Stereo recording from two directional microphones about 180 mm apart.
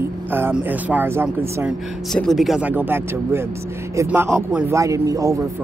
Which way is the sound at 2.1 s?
Centre (ahead or behind).